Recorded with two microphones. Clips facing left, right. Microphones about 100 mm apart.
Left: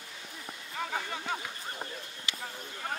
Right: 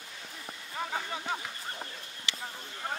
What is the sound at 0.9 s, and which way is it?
Speech, 10° right (ahead or behind).